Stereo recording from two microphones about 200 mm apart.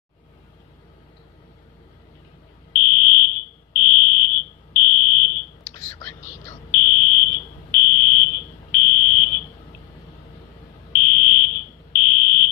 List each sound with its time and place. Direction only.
2.8 s fire alarm: 45° left (ahead or behind)
5.9 s whispering: 10° left (ahead or behind)
6.7 s fire alarm: 45° left (ahead or behind)
10.9 s fire alarm: 45° left (ahead or behind)